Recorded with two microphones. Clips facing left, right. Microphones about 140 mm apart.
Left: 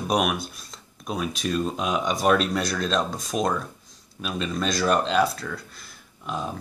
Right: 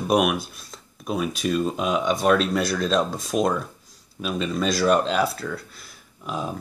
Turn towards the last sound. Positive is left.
turn(degrees=-5)  # may be behind; listen again after turning